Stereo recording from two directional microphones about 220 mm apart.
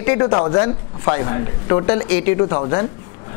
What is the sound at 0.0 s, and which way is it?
Speech, 20° left (ahead or behind).